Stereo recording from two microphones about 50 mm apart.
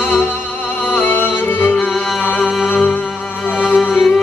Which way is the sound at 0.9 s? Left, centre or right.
Left.